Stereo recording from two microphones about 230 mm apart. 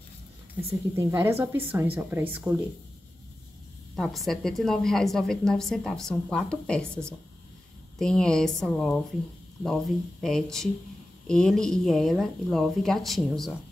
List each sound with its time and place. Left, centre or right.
0.9 s a woman's voice: centre
3.9 s a woman's voice: centre
8.0 s a woman's voice: centre